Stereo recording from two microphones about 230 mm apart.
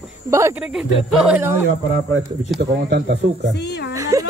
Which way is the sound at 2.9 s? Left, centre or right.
Right.